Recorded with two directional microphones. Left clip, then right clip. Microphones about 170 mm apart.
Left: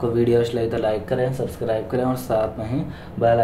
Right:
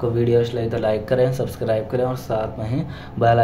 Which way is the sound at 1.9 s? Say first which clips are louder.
Even; centre (ahead or behind).